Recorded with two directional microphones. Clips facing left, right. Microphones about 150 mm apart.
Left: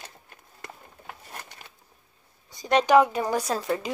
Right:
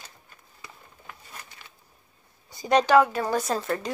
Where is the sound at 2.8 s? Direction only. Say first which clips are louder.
Left 3 dB; 15° left (ahead or behind).